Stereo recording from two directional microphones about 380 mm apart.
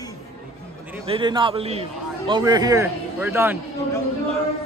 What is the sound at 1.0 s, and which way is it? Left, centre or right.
A man's voice, centre.